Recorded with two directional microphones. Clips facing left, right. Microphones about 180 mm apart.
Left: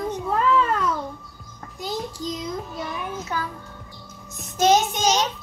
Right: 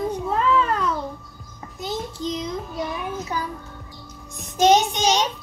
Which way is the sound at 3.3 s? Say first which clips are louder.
Left 1 dB; 15° right (ahead or behind).